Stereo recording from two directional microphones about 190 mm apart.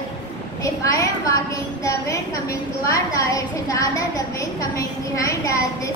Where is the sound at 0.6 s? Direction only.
15° left (ahead or behind).